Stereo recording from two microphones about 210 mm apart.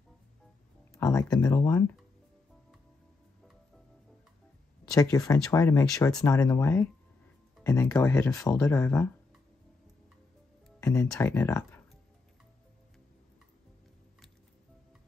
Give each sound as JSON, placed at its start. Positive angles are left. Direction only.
{"t": 0.9, "sound": "speech", "side_deg": 15}
{"t": 4.9, "sound": "speech", "side_deg": 15}
{"t": 10.8, "sound": "speech", "side_deg": 15}